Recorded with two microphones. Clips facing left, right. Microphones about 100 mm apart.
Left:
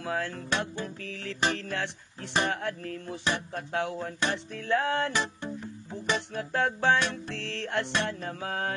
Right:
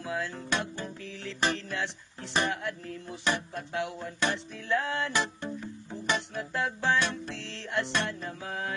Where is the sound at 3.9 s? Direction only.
40° left (ahead or behind).